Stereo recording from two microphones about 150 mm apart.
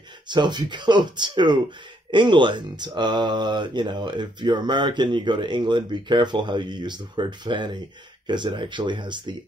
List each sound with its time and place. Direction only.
0.3 s speech: 30° right (ahead or behind)